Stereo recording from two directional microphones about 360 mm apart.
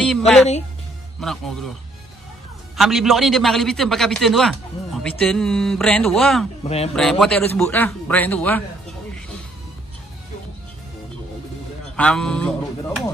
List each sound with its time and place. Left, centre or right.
1.2 s a man's voice: centre
6.6 s speech: centre
7.0 s a man's voice: centre
12.0 s speech: centre